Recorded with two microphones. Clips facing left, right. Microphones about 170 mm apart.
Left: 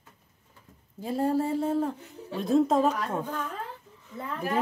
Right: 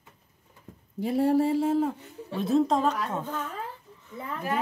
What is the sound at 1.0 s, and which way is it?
Speech, 70° right (ahead or behind).